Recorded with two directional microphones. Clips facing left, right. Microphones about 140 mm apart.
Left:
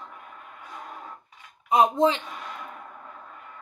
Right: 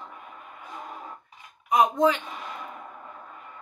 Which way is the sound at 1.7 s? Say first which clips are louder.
Left 1 dB; 25° left (ahead or behind).